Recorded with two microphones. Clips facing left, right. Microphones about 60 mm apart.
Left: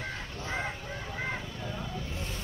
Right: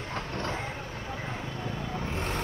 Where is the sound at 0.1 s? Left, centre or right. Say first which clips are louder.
Right 4 dB; right.